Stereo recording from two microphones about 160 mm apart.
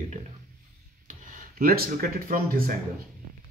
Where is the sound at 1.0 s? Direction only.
55° right (ahead or behind).